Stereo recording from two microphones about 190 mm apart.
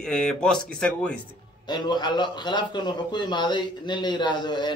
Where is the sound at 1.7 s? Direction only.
20° left (ahead or behind).